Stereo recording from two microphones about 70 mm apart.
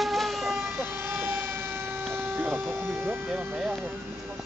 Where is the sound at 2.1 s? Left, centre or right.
Right.